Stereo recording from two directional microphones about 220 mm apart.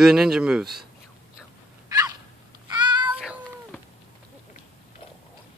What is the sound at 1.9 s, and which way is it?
Dog, 15° right (ahead or behind).